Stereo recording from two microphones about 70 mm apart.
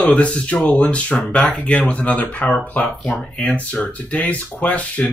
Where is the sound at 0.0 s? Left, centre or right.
Centre.